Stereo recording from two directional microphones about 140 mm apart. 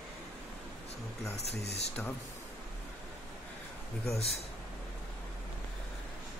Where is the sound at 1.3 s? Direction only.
50° left (ahead or behind).